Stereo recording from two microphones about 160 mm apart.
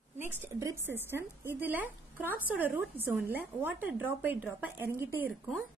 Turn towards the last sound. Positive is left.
turn(degrees=-10)  # may be behind; listen again after turning